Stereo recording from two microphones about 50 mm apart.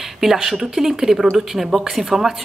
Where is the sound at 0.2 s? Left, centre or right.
Centre.